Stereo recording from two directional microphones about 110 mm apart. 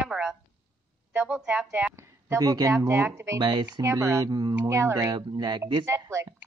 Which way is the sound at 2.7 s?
25° right (ahead or behind).